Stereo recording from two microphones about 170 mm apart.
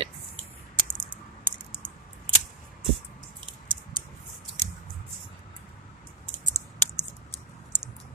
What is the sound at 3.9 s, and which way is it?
Typing, 25° right (ahead or behind).